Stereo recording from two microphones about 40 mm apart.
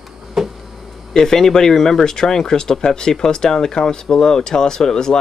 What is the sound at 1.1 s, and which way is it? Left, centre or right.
Speech, centre.